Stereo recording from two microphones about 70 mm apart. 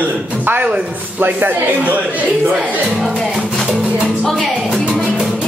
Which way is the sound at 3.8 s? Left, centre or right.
Centre.